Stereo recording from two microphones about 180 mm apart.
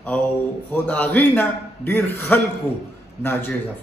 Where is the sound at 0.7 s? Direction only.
10° left (ahead or behind).